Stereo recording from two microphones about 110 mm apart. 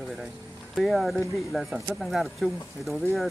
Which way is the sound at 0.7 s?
Centre (ahead or behind).